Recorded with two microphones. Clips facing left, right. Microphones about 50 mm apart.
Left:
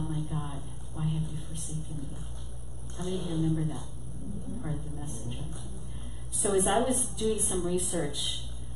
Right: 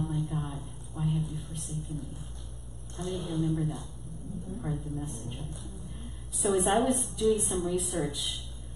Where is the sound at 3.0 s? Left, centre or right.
Centre.